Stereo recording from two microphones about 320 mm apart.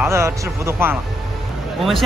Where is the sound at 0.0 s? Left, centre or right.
Centre.